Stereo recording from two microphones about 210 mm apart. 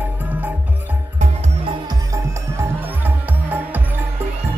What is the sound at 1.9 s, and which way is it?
Music, 15° right (ahead or behind).